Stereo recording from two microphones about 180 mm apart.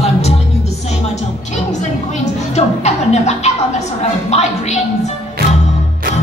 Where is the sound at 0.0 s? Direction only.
35° left (ahead or behind).